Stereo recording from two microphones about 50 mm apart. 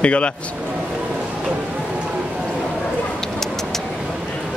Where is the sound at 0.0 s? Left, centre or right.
Left.